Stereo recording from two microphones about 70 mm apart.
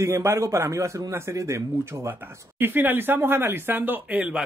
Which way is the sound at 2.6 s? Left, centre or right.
Right.